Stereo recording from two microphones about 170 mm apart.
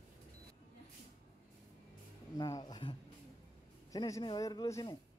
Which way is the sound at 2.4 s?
20° left (ahead or behind).